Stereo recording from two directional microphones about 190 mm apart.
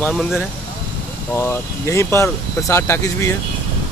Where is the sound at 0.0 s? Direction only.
Centre (ahead or behind).